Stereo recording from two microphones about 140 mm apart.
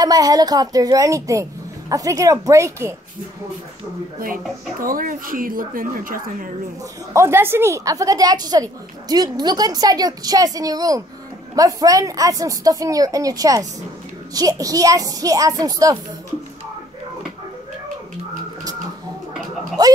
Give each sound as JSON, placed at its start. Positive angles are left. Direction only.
{"t": 0.0, "sound": "a child's voice", "side_deg": -25}
{"t": 4.7, "sound": "speech", "side_deg": -85}
{"t": 7.2, "sound": "a child's voice", "side_deg": -15}
{"t": 19.8, "sound": "a child's voice", "side_deg": -30}